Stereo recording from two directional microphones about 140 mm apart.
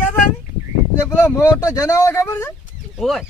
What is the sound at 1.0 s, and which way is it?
Speech, 20° left (ahead or behind).